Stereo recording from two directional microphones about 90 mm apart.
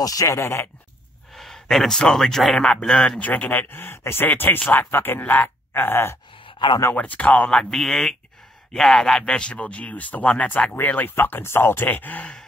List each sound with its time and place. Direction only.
0.0 s speech: 40° left (ahead or behind)
1.3 s a man's voice: centre (ahead or behind)
3.2 s speech: 15° left (ahead or behind)
6.4 s a sound: 65° left (ahead or behind)
7.0 s speech: 15° left (ahead or behind)
7.5 s a man's voice: 5° left (ahead or behind)